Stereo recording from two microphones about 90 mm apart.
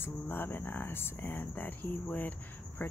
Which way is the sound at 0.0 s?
25° left (ahead or behind).